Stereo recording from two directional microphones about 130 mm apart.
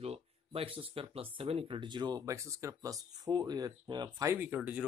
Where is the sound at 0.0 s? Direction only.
45° right (ahead or behind).